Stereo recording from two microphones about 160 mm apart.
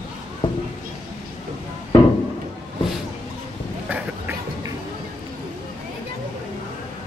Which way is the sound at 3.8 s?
10° right (ahead or behind).